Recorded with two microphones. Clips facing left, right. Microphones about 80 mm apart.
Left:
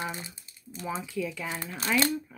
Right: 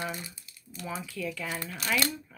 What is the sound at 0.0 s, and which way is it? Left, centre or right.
Speech, left.